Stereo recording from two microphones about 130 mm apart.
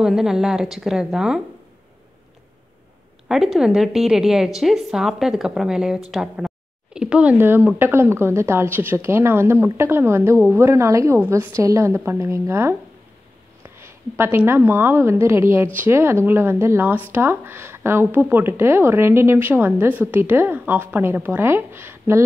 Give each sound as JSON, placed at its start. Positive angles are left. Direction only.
{"t": 0.0, "sound": "a woman's voice", "side_deg": -5}
{"t": 3.3, "sound": "a woman's voice", "side_deg": -5}